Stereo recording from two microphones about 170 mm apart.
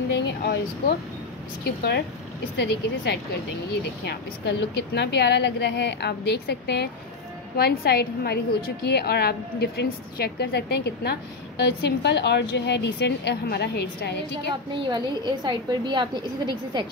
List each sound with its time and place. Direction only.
0.1 s a woman's voice: 80° left
2.5 s a woman's voice: 85° left
14.7 s a woman's voice: 30° right (ahead or behind)